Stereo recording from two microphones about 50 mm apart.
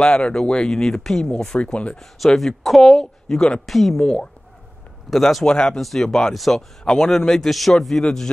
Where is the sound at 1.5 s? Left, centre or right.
Left.